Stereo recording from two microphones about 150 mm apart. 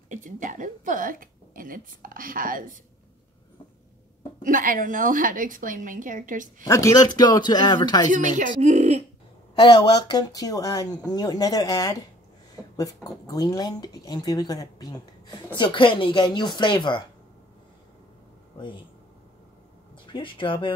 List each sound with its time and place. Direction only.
0.1 s a woman's voice: 60° right (ahead or behind)
4.4 s a woman's voice: 60° right (ahead or behind)
6.6 s speech: 20° left (ahead or behind)
8.1 s speech: 50° right (ahead or behind)
9.6 s speech: 30° left (ahead or behind)
20.1 s speech: 35° left (ahead or behind)